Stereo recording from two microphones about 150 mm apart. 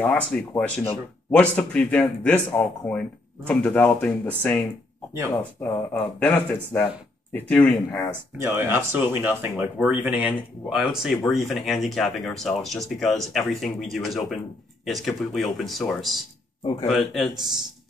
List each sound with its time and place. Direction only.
0.0 s speech: 10° left (ahead or behind)
8.4 s speech: 15° right (ahead or behind)